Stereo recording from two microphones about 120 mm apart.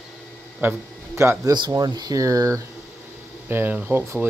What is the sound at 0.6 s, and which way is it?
Speech, 20° right (ahead or behind).